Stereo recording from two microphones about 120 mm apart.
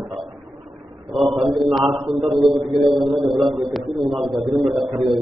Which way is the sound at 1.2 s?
5° right (ahead or behind).